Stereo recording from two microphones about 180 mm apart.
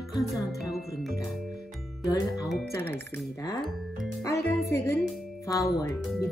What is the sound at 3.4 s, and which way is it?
Speech, 20° left (ahead or behind).